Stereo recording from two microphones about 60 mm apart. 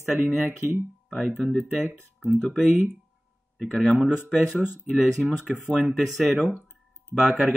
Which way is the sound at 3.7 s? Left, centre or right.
Centre.